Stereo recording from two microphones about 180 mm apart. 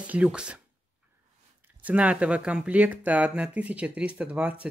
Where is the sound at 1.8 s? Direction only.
5° right (ahead or behind).